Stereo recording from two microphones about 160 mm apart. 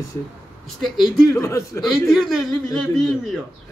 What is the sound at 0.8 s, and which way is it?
Speech, centre (ahead or behind).